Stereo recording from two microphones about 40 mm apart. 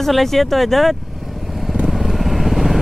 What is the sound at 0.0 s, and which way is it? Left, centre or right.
Speech, centre.